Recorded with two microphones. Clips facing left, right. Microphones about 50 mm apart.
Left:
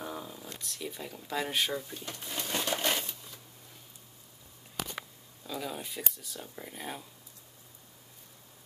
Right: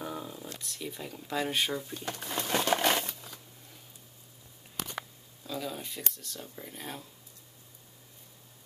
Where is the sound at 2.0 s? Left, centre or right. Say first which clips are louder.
Right 4 dB; right.